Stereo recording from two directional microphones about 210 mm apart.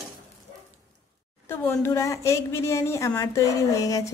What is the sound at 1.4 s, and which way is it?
A woman's voice, 10° left (ahead or behind).